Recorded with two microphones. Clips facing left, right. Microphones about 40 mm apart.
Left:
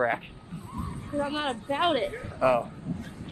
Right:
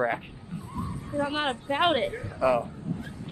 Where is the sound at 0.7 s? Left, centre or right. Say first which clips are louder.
Even; left.